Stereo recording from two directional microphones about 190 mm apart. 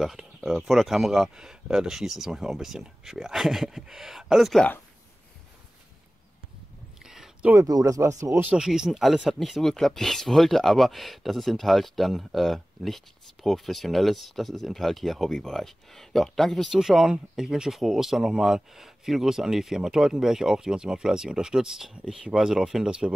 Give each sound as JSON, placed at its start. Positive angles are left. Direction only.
{"t": 0.0, "sound": "speech", "side_deg": 0}
{"t": 7.0, "sound": "a sound", "side_deg": -5}
{"t": 7.5, "sound": "speech", "side_deg": -20}